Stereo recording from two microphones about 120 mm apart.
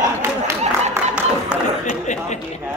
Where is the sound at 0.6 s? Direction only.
70° right (ahead or behind).